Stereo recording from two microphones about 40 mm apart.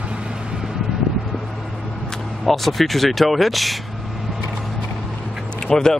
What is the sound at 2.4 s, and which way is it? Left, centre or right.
Speech, centre.